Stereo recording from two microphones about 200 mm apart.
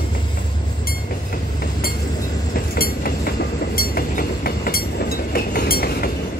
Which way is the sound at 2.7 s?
50° left (ahead or behind).